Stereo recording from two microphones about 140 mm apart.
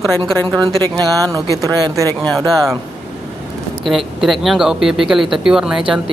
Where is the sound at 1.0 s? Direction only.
25° right (ahead or behind).